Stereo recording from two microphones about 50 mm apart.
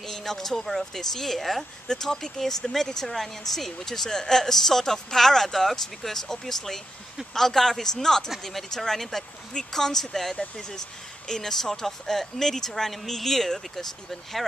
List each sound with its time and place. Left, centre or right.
0.0 s speech: centre
10.3 s speech: centre